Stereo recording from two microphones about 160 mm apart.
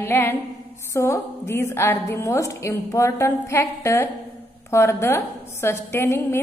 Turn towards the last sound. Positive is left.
turn(degrees=15)  # may be behind; listen again after turning